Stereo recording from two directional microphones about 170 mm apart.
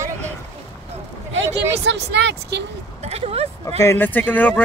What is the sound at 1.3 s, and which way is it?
Speech, 90° right.